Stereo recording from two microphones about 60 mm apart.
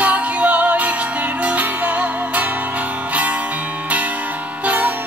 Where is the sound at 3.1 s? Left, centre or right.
Right.